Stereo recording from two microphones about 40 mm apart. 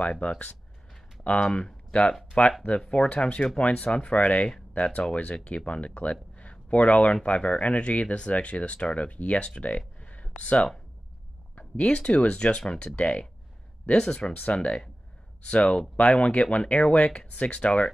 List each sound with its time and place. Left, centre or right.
0.0 s speech: left
6.3 s a sound: left
7.2 s speech: left
11.8 s speech: left
12.9 s speech: left
15.6 s speech: centre
16.1 s speech: left